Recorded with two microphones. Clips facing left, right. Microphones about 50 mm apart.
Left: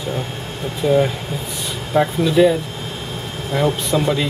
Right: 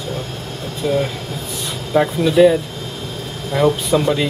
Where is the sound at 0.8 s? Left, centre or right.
Centre.